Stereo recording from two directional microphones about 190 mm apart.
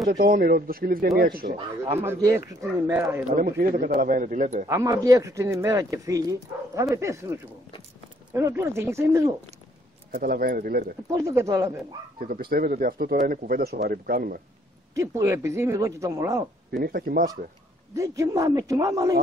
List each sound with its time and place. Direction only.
0.1 s speech: 50° right (ahead or behind)
1.9 s speech: 15° right (ahead or behind)
3.3 s speech: 50° right (ahead or behind)
4.6 s speech: 15° right (ahead or behind)
10.1 s speech: 50° right (ahead or behind)
11.1 s speech: 15° right (ahead or behind)
12.2 s speech: 50° right (ahead or behind)
15.0 s speech: 15° right (ahead or behind)
16.7 s speech: 50° right (ahead or behind)
17.9 s speech: 15° right (ahead or behind)